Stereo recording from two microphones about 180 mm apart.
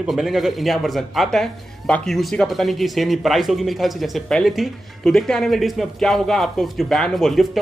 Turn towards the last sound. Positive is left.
turn(degrees=0)  # may be behind; listen again after turning